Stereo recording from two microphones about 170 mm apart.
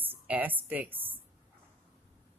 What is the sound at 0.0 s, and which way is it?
A woman's voice, 10° right (ahead or behind).